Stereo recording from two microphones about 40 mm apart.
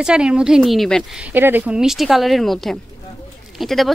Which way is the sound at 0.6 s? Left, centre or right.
Centre.